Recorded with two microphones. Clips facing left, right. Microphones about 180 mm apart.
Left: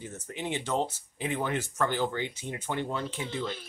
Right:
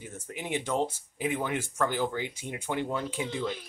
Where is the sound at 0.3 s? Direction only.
10° right (ahead or behind).